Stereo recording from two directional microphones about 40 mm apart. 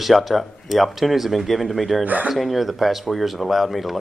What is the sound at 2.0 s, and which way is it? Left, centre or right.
Speech, right.